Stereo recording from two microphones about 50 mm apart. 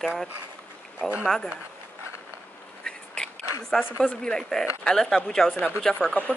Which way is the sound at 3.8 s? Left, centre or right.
Left.